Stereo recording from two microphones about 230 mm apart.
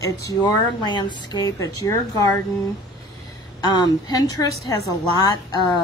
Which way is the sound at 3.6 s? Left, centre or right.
Centre.